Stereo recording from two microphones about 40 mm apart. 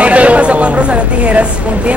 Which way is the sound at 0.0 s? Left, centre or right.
Right.